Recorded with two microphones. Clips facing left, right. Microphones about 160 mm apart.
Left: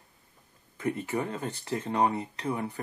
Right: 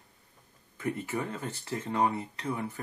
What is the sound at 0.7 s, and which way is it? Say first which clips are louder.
Speech: left 3 dB; 20° left (ahead or behind).